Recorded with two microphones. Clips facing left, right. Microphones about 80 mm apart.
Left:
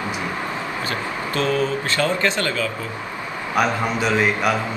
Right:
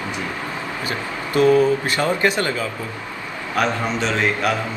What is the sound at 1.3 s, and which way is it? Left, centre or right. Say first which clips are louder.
Speech: right 7 dB; centre.